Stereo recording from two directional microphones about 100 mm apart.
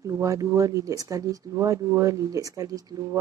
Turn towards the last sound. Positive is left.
turn(degrees=-35)  # may be behind; listen again after turning